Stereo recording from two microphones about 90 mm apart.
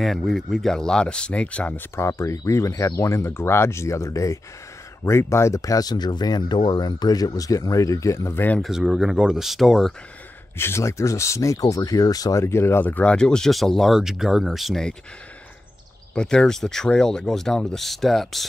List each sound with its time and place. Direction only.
0.0 s speech: centre (ahead or behind); by 1.9 s 20° left (ahead or behind)
2.0 s speech: 35° left (ahead or behind)
8.5 s speech: 5° right (ahead or behind)
10.6 s speech: 30° left (ahead or behind); by 14.9 s centre (ahead or behind)
16.2 s speech: 10° left (ahead or behind)